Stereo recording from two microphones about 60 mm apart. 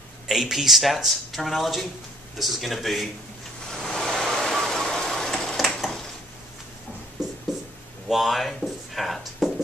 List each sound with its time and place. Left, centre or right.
0.3 s speech: centre
3.7 s vehicle: centre
7.2 s a sound: right
8.1 s speech: centre